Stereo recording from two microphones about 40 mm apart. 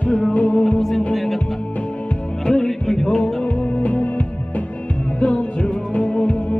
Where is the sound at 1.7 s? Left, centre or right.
Left.